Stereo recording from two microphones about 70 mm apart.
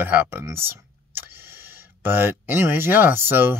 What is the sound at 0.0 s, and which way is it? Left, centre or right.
Speech, right.